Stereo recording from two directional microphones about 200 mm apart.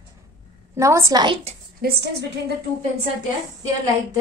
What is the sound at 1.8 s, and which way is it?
Speech, 55° right (ahead or behind).